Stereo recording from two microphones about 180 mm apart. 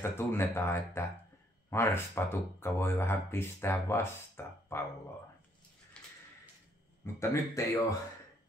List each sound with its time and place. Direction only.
0.0 s speech: 15° left (ahead or behind)
6.0 s a sound: 5° left (ahead or behind)
7.2 s speech: 15° left (ahead or behind)